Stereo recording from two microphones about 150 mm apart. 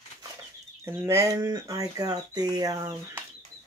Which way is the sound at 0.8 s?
15° right (ahead or behind).